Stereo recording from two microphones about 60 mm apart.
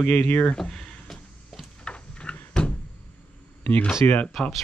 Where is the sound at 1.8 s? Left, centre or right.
Centre.